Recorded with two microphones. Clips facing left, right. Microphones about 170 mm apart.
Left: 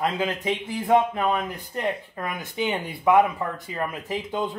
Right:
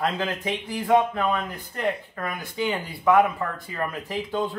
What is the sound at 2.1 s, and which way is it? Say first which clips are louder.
Speech: even; 20° left (ahead or behind).